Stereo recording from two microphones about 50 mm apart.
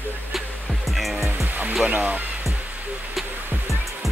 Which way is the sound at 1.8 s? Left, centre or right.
Right.